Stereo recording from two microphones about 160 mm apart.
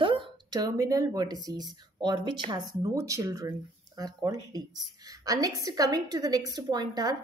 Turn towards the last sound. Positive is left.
turn(degrees=-25)  # may be behind; listen again after turning